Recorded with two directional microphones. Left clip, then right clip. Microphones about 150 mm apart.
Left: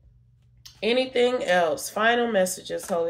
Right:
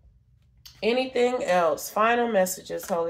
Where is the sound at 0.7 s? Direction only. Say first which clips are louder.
Left 1 dB; 25° left (ahead or behind).